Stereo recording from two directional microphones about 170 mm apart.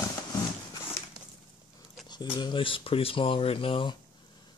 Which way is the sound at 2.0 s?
25° left (ahead or behind).